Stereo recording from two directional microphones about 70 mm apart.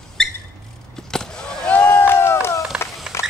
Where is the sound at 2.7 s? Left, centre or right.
Centre.